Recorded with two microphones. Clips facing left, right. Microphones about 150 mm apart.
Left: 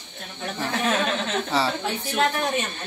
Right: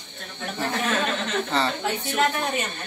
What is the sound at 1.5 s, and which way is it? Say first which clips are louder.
Speech: left 1 dB; 5° left (ahead or behind).